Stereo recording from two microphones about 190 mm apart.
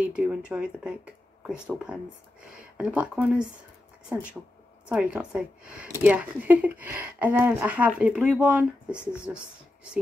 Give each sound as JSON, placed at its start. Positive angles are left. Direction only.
{"t": 0.0, "sound": "speech", "side_deg": -5}
{"t": 4.8, "sound": "speech", "side_deg": -5}